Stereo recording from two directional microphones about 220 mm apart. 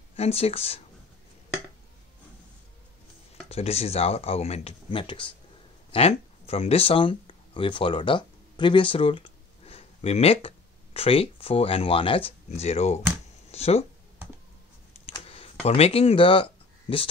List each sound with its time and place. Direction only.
0.1 s speech: 25° left (ahead or behind)
3.4 s speech: 30° left (ahead or behind)
15.0 s computer keyboard: 25° left (ahead or behind)